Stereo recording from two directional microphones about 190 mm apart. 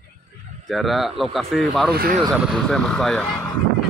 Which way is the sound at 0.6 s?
Centre (ahead or behind).